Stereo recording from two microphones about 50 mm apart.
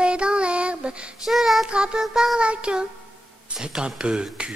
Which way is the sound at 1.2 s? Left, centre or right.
Centre.